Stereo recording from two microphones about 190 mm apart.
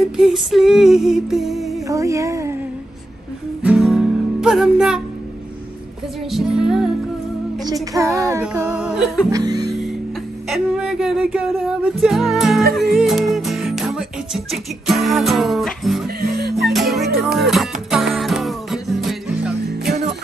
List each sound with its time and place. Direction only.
0.2 s music: centre (ahead or behind)
1.9 s music: 15° right (ahead or behind)
3.6 s music: 5° right (ahead or behind)
6.3 s music: 5° right (ahead or behind)
7.6 s music: 15° right (ahead or behind)
9.3 s music: 20° right (ahead or behind)
10.5 s music: 5° right (ahead or behind)
16.2 s music: 55° right (ahead or behind)
16.5 s music: centre (ahead or behind)